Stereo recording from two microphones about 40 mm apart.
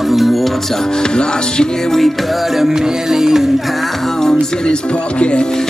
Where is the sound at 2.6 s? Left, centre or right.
Centre.